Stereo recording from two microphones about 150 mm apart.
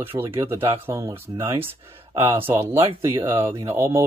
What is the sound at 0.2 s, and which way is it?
Speech, 15° right (ahead or behind).